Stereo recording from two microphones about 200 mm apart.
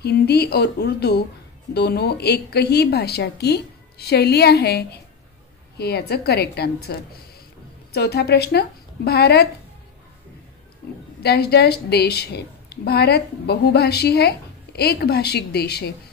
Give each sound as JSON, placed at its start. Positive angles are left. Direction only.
{"t": 0.0, "sound": "a woman's voice", "side_deg": 55}
{"t": 11.2, "sound": "a woman's voice", "side_deg": 55}